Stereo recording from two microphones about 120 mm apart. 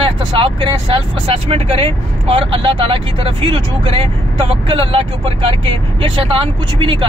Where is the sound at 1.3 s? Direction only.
55° right (ahead or behind).